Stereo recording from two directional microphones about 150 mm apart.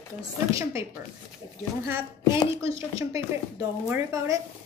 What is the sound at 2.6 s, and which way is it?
Speech, 20° right (ahead or behind).